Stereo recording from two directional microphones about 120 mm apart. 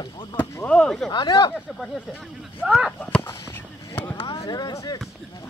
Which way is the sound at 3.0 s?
10° left (ahead or behind).